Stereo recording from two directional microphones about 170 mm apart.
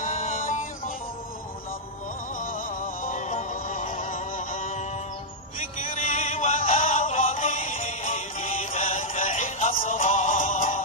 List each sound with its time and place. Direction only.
0.0 s music: 50° left (ahead or behind)
2.3 s music: 55° left (ahead or behind)
6.0 s music: 45° left (ahead or behind)